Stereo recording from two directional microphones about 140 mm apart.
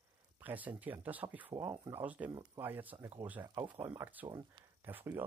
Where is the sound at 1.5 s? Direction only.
25° right (ahead or behind).